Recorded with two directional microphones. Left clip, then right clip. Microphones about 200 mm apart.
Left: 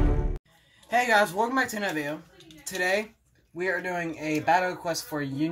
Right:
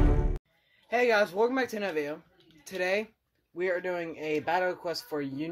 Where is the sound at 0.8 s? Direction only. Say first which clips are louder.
Left 3 dB; 35° right (ahead or behind).